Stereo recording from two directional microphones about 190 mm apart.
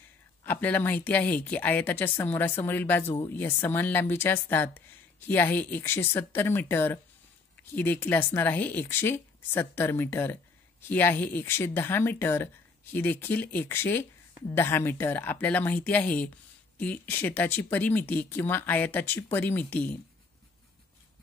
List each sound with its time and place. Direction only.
0.5 s speech: 10° left (ahead or behind)